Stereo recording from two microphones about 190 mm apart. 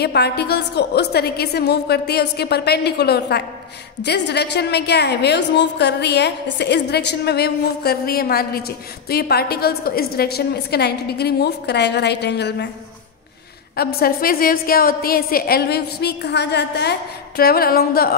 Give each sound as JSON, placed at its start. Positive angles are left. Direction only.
{"t": 0.0, "sound": "a woman's voice", "side_deg": 60}
{"t": 13.9, "sound": "a woman's voice", "side_deg": 50}